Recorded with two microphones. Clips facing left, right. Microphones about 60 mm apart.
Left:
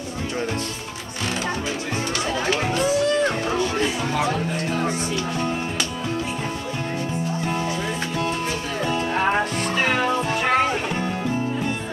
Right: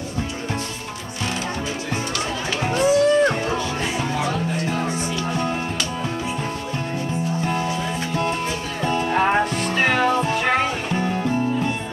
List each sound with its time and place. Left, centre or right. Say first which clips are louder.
2.7 s a sound: right 7 dB; centre
4.2 s music: even; centre
8.8 s music: right 3 dB; centre